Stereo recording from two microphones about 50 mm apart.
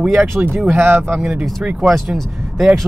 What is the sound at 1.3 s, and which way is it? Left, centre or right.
Speech, centre.